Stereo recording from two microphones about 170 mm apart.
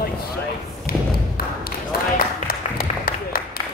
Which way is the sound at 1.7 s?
60° left (ahead or behind).